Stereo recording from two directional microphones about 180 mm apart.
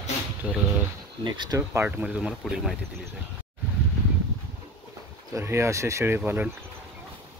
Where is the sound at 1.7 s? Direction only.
10° right (ahead or behind).